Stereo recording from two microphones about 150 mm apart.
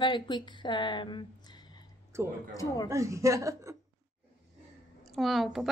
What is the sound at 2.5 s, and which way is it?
Speech, 20° left (ahead or behind).